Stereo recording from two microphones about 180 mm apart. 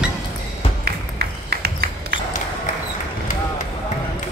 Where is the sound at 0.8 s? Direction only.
65° right (ahead or behind).